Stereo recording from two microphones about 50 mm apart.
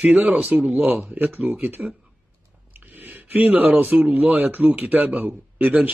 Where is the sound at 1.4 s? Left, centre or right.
Right.